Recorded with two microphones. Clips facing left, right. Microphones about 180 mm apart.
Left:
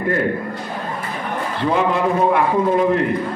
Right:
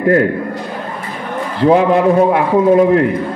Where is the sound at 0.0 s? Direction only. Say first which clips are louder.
Right 8 dB; 55° right (ahead or behind).